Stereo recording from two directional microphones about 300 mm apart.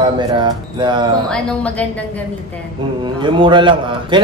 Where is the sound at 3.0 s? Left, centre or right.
Centre.